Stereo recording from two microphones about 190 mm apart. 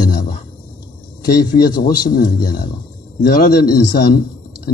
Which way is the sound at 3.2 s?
55° left (ahead or behind).